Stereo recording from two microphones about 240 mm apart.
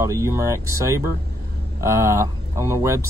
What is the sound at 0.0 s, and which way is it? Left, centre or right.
Speech, centre.